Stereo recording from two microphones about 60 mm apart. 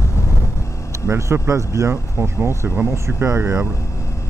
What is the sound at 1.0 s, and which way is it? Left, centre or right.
Speech, right.